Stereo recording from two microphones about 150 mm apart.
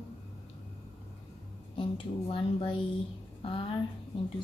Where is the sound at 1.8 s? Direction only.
35° left (ahead or behind).